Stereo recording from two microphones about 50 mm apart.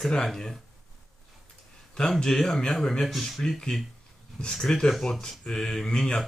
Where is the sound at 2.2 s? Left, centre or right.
Centre.